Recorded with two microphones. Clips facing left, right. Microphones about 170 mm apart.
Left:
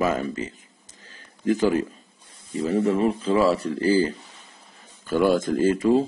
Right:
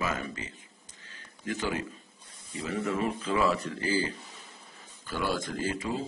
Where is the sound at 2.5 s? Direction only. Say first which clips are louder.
Left 10 dB; 35° left (ahead or behind).